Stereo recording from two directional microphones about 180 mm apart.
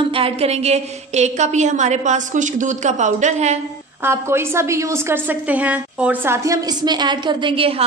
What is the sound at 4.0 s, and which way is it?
A woman's voice, 15° right (ahead or behind).